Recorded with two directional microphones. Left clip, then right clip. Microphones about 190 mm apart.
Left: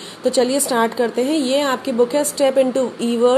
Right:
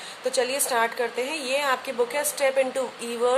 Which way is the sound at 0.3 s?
25° left (ahead or behind).